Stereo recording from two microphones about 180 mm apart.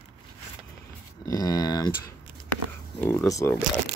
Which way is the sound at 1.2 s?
20° left (ahead or behind).